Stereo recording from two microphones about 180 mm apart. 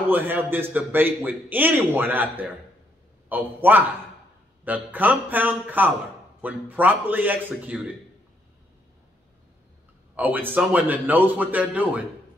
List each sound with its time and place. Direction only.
0.1 s a man's voice: 10° right (ahead or behind)
10.1 s a man's voice: 10° right (ahead or behind)